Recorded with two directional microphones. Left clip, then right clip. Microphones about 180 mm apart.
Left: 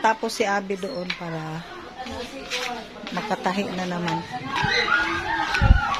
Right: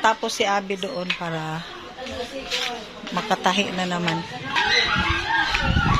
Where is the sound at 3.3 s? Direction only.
Centre (ahead or behind).